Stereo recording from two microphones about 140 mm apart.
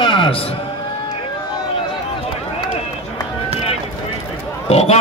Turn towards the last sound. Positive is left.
turn(degrees=50)  # may be behind; listen again after turning